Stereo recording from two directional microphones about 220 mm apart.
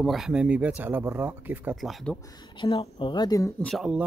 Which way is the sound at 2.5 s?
25° left (ahead or behind).